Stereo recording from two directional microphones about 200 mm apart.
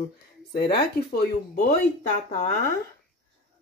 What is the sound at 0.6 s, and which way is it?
Speech, 55° left (ahead or behind).